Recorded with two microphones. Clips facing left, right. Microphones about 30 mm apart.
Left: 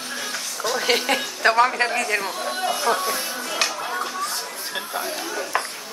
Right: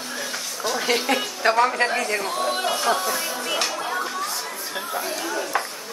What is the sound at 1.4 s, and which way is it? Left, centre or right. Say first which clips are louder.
Speech: left 1 dB; left.